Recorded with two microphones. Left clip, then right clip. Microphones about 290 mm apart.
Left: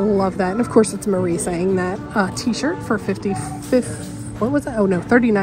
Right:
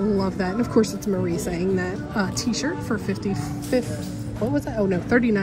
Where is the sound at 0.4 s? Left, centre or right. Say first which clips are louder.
Left 5 dB; centre.